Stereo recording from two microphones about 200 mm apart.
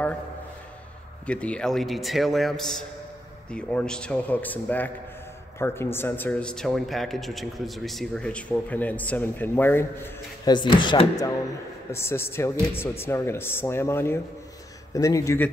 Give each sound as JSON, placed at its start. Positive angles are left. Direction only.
{"t": 1.2, "sound": "speech", "side_deg": 5}
{"t": 10.4, "sound": "speech", "side_deg": 20}